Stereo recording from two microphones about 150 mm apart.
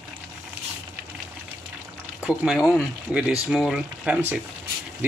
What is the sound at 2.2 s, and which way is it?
Speech, 5° right (ahead or behind).